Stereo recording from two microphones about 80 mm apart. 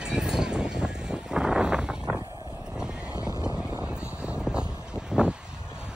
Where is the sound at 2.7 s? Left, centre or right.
Centre.